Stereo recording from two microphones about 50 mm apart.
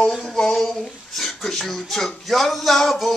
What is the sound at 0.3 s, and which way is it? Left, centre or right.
A child's voice, centre.